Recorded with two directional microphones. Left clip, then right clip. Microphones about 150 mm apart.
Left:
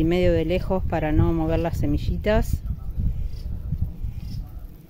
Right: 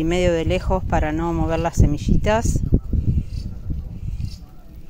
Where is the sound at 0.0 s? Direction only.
15° left (ahead or behind).